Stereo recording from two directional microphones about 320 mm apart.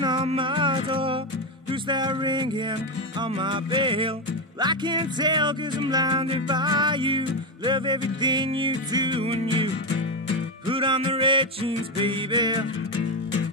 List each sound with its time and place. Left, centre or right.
0.0 s music: centre
10.7 s music: centre